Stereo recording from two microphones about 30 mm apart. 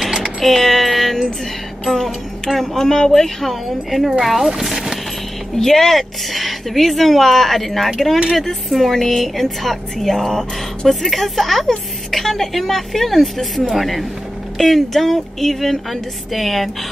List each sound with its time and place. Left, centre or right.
0.2 s vehicle: centre
2.0 s music: centre
2.6 s speech: centre
4.2 s speech: centre
5.6 s speech: centre